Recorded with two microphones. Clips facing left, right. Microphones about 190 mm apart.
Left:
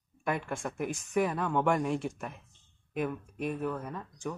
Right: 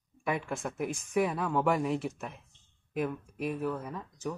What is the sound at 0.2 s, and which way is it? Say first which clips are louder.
Speech: even; centre (ahead or behind).